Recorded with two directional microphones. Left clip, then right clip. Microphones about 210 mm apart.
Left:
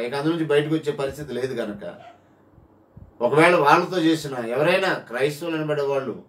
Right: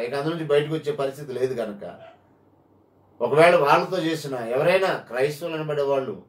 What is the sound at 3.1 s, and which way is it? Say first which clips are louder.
Speech: even; 15° left (ahead or behind).